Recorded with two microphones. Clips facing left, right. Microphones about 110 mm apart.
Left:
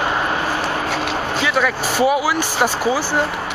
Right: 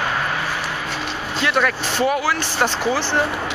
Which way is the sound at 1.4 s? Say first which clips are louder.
Right 1 dB; centre (ahead or behind).